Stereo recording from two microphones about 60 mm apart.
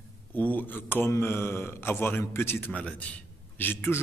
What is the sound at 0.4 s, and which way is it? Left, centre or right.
A man's voice, left.